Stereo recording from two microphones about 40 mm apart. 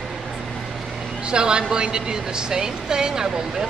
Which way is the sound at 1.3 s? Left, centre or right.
Right.